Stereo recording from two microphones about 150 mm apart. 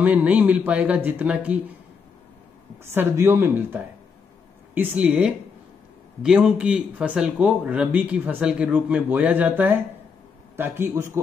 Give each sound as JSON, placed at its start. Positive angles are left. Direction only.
{"t": 0.0, "sound": "speech", "side_deg": -10}
{"t": 2.9, "sound": "speech", "side_deg": -15}
{"t": 4.9, "sound": "a man's voice", "side_deg": -5}